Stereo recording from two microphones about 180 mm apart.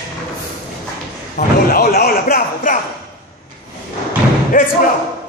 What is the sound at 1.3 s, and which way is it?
A man's voice, 55° left (ahead or behind).